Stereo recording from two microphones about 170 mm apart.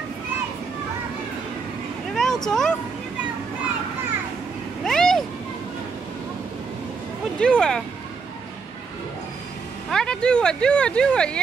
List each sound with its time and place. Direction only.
2.1 s vehicle: 5° left (ahead or behind)
4.8 s vehicle: centre (ahead or behind)
7.3 s speech: 5° left (ahead or behind)
9.8 s speech: 5° left (ahead or behind)